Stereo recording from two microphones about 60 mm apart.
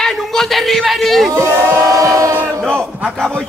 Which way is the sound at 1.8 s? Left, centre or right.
Right.